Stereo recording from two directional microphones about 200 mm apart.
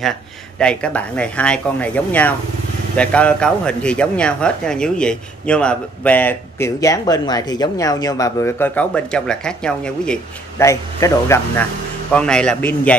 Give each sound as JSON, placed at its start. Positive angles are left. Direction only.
{"t": 0.6, "sound": "speech", "side_deg": 5}
{"t": 10.6, "sound": "a man's voice", "side_deg": 15}